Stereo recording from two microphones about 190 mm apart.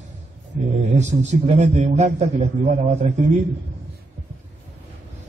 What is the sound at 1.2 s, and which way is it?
A man's voice, 35° right (ahead or behind).